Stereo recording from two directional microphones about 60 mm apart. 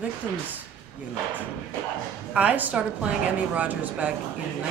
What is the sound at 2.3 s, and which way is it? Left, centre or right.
Speech, right.